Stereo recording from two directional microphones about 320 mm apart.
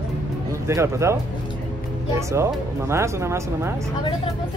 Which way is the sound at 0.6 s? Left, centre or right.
Centre.